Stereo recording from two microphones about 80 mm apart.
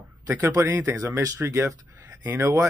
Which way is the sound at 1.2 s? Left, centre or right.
Right.